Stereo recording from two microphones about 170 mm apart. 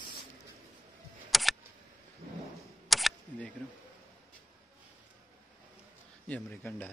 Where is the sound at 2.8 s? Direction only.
Centre (ahead or behind).